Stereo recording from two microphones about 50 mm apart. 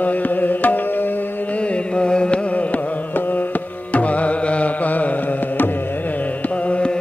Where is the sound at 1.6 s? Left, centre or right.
Left.